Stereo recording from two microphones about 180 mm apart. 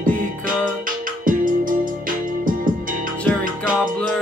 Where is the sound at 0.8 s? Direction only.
50° right (ahead or behind).